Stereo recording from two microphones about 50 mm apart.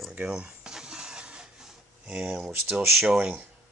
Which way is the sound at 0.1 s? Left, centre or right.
Right.